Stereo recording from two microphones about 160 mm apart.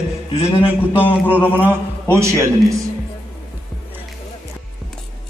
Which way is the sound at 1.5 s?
10° right (ahead or behind).